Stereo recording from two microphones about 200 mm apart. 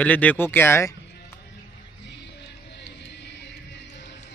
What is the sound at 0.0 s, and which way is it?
Speech, 5° left (ahead or behind).